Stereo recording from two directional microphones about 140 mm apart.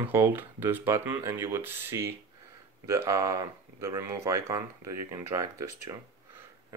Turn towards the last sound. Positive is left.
turn(degrees=-25)  # may be behind; listen again after turning